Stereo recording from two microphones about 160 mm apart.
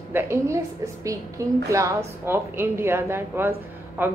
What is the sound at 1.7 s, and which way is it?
Speech, 20° right (ahead or behind).